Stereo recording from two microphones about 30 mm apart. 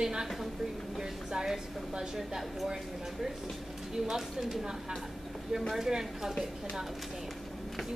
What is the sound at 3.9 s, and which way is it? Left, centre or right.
Speech, centre.